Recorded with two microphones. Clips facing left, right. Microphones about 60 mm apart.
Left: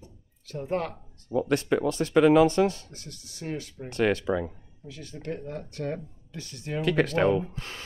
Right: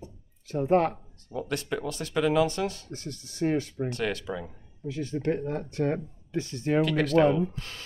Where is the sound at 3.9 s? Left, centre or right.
Left.